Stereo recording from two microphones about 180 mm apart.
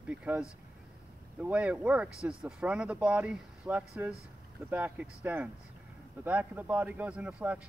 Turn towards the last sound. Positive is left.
turn(degrees=-5)  # may be behind; listen again after turning